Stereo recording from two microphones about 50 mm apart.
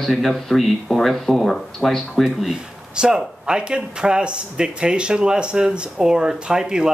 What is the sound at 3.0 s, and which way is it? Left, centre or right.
Speech, centre.